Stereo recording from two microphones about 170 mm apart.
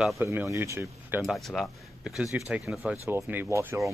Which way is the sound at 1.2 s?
Centre (ahead or behind).